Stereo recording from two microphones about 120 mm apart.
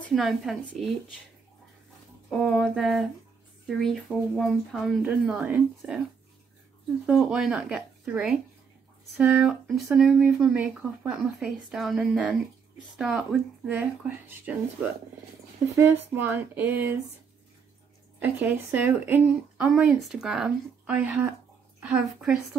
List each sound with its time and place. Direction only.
0.1 s speech: centre (ahead or behind)
2.2 s speech: centre (ahead or behind)
7.1 s speech: 5° right (ahead or behind)
9.5 s speech: centre (ahead or behind)
15.7 s speech: 20° right (ahead or behind)
18.2 s speech: 20° right (ahead or behind)
19.7 s speech: 5° right (ahead or behind)